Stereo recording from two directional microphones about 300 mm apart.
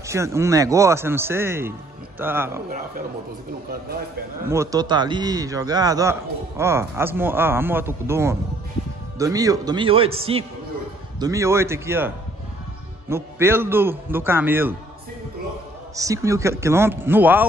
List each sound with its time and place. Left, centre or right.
0.0 s a man's voice: centre
4.5 s a man's voice: centre
13.1 s a man's voice: centre
16.0 s a man's voice: centre